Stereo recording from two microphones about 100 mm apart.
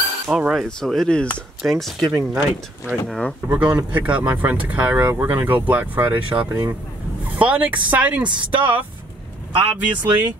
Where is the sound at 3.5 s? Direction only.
10° right (ahead or behind).